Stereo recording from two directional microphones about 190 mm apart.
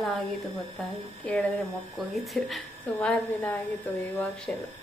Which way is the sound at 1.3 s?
5° left (ahead or behind).